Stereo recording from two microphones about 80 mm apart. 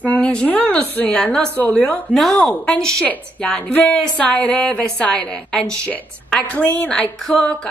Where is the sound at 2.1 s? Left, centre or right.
Centre.